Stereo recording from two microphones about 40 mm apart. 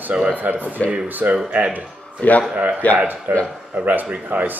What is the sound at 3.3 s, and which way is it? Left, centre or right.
Speech, right.